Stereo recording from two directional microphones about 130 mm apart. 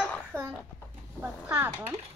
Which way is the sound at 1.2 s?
15° right (ahead or behind).